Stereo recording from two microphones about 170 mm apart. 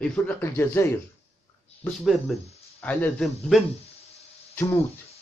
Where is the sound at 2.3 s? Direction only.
Centre (ahead or behind).